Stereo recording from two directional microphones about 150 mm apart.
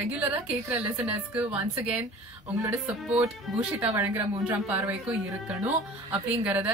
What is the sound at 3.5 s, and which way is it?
A woman's voice, 15° right (ahead or behind).